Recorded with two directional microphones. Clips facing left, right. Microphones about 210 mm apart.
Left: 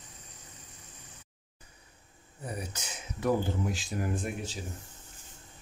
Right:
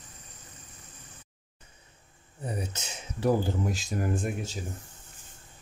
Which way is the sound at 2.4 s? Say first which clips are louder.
Right 3 dB; 25° right (ahead or behind).